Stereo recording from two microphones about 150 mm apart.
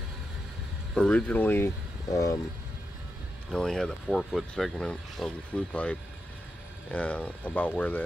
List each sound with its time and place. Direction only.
0.9 s speech: 5° left (ahead or behind)
3.5 s speech: 5° left (ahead or behind)